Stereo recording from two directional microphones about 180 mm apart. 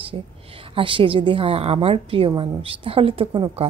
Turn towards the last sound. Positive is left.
turn(degrees=-30)  # may be behind; listen again after turning